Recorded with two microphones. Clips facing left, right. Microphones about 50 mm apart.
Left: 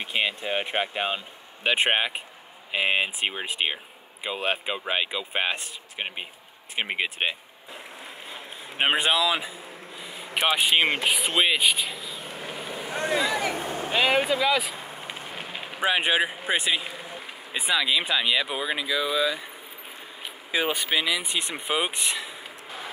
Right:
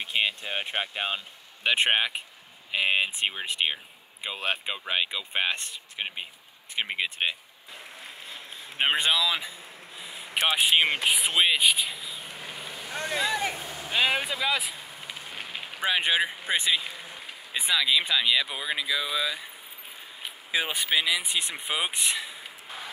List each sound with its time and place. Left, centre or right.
0.0 s speech: centre
8.3 s a sound: centre
9.9 s a sound: centre
10.2 s speech: centre
13.0 s a sound: left
14.0 s speech: left
14.4 s speech: centre
14.8 s a sound: left
15.8 s speech: centre
16.4 s vehicle: centre
17.6 s speech: centre
20.5 s speech: centre